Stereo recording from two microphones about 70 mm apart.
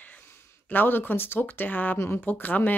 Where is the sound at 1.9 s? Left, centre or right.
Left.